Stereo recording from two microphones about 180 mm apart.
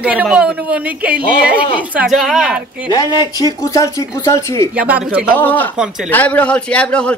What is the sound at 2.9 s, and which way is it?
A man's voice, 20° left (ahead or behind).